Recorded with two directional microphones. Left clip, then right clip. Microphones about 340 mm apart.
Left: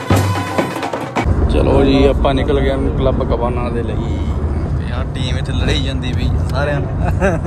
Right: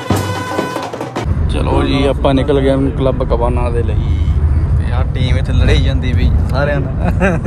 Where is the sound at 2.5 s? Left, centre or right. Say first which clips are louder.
Right 4 dB; right.